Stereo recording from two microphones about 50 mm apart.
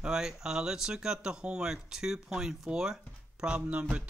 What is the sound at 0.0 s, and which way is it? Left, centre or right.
Speech, centre.